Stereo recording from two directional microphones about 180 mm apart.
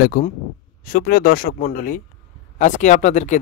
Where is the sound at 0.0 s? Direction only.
50° left (ahead or behind).